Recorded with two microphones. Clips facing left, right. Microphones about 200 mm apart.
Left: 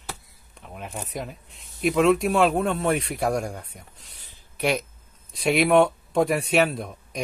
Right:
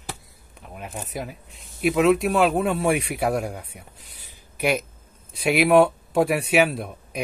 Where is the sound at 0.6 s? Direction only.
Centre (ahead or behind).